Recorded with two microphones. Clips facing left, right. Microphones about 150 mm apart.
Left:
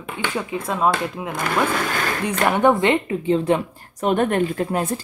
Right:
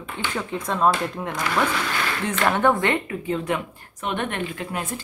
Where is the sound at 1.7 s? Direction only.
45° left (ahead or behind).